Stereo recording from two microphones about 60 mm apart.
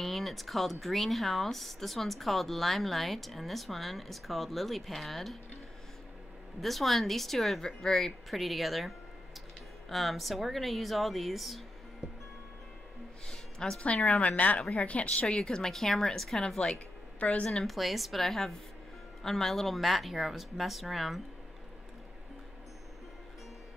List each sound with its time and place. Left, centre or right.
0.0 s speech: centre
6.6 s speech: centre
13.3 s a woman's voice: centre
17.2 s a woman's voice: left
17.5 s speech: centre